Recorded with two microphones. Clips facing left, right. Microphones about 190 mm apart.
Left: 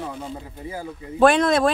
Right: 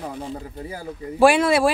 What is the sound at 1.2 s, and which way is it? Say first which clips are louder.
Speech: right 1 dB; 10° right (ahead or behind).